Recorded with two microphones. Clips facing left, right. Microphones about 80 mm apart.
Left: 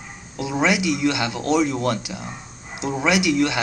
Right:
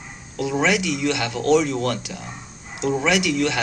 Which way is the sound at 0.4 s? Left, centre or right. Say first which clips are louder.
Even; centre.